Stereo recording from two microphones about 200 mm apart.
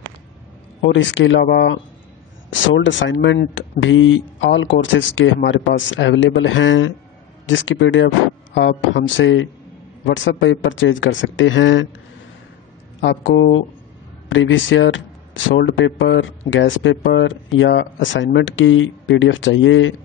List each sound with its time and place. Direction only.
0.8 s speech: 70° left (ahead or behind)
2.5 s speech: 65° left (ahead or behind)
13.0 s speech: 60° left (ahead or behind)